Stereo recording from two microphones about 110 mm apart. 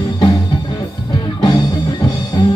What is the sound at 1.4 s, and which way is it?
Music, 40° left (ahead or behind).